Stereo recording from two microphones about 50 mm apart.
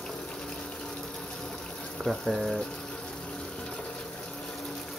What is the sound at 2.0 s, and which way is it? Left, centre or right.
Speech, centre.